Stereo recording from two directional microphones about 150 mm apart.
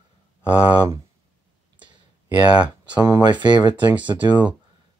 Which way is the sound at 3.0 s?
25° right (ahead or behind).